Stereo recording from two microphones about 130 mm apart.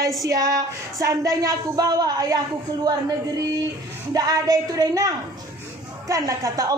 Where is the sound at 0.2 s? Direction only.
25° right (ahead or behind).